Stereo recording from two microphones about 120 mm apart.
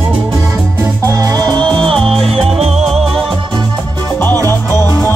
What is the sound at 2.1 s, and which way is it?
Music, 55° right (ahead or behind).